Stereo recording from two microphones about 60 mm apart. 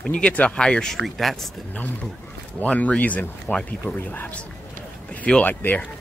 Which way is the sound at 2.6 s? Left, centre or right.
Left.